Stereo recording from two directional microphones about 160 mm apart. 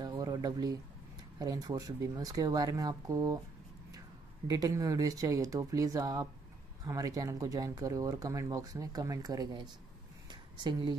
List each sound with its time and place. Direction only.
0.0 s a sound: 25° right (ahead or behind)
1.4 s speech: 25° right (ahead or behind)
4.5 s speech: 20° right (ahead or behind)